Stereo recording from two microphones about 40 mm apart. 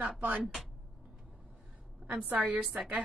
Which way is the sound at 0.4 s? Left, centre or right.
Centre.